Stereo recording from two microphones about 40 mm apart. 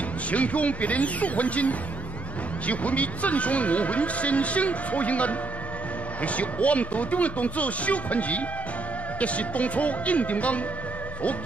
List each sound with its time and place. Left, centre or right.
0.3 s speech: left